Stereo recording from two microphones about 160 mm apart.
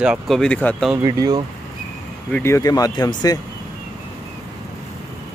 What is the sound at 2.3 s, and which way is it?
Speech, 15° left (ahead or behind).